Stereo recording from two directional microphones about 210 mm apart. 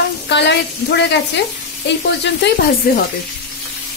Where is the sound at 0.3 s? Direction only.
55° left (ahead or behind).